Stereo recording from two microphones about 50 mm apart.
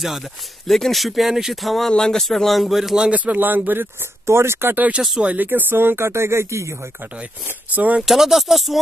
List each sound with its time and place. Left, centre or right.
0.0 s speech: centre
1.9 s speech: centre
2.2 s speech: centre
3.1 s speech: right
4.3 s speech: right
5.2 s speech: right
7.4 s speech: right
8.0 s speech: centre